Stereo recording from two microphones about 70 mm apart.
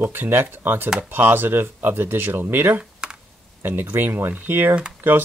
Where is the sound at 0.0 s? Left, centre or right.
Right.